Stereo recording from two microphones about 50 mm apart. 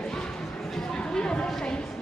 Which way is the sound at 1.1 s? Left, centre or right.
Centre.